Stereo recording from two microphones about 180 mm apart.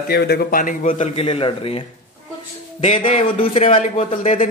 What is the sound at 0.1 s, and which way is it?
Speech, 65° left (ahead or behind).